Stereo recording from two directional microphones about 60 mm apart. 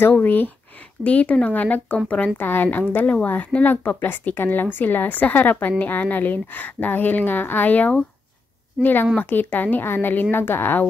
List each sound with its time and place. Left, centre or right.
0.1 s a woman's voice: left
2.4 s a woman's voice: left
9.2 s a woman's voice: left